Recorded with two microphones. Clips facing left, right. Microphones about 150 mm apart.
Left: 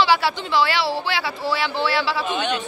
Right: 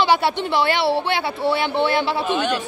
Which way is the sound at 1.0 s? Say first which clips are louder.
Right 4 dB; 25° right (ahead or behind).